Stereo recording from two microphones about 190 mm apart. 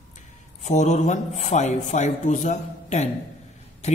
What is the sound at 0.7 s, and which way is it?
Speech, 40° left (ahead or behind).